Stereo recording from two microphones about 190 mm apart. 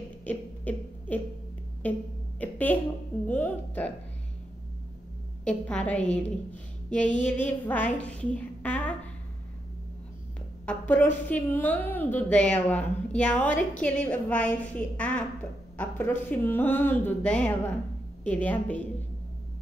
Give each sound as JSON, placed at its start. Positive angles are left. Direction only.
{"t": 0.2, "sound": "a sound", "side_deg": 10}
{"t": 1.8, "sound": "music", "side_deg": 10}
{"t": 2.4, "sound": "a sound", "side_deg": 10}
{"t": 5.4, "sound": "music", "side_deg": 5}
{"t": 6.9, "sound": "a woman's voice", "side_deg": 5}
{"t": 10.6, "sound": "a woman's voice", "side_deg": 10}